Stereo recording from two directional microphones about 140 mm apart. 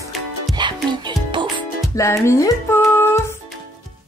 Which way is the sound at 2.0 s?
20° left (ahead or behind).